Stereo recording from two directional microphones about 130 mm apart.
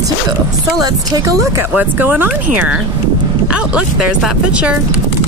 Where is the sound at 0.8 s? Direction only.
30° right (ahead or behind); by 4.7 s 10° right (ahead or behind).